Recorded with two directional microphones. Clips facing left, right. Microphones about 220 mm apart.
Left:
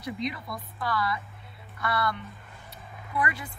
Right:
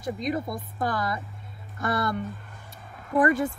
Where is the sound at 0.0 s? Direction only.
45° right (ahead or behind).